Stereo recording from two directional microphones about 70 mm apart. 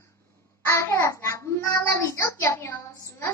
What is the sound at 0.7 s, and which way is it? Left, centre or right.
A child's voice, left.